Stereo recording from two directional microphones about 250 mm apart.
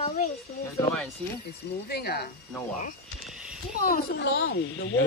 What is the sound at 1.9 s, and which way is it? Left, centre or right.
Speech, left.